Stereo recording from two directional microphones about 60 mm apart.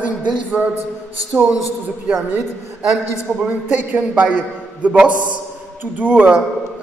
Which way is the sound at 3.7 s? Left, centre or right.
Right.